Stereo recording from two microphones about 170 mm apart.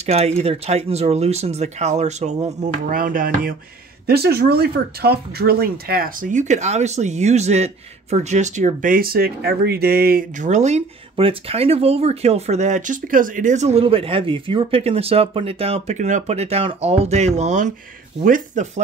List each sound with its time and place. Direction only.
0.0 s speech: 40° right (ahead or behind); by 3.5 s 55° right (ahead or behind)
4.1 s speech: 70° right (ahead or behind); by 18.7 s 50° right (ahead or behind)